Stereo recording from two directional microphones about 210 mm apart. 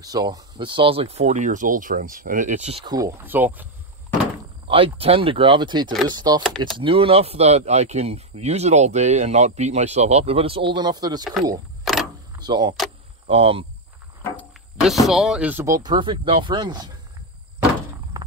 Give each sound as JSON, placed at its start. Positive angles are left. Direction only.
{"t": 0.0, "sound": "speech", "side_deg": -20}
{"t": 4.6, "sound": "speech", "side_deg": -25}
{"t": 11.8, "sound": "vehicle", "side_deg": 0}
{"t": 12.4, "sound": "speech", "side_deg": -20}
{"t": 14.3, "sound": "a sound", "side_deg": -5}
{"t": 15.0, "sound": "speech", "side_deg": 0}